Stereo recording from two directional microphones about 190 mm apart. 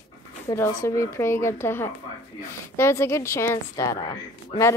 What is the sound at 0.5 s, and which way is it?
A woman's voice, 15° left (ahead or behind).